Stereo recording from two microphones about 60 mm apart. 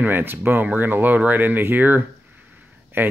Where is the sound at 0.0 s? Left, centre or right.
Right.